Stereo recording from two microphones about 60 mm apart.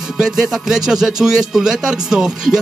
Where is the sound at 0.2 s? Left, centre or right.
Centre.